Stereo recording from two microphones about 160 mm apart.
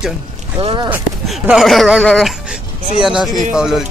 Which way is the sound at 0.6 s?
35° right (ahead or behind).